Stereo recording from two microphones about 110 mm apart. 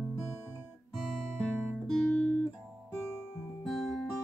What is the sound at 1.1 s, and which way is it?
Music, 5° left (ahead or behind).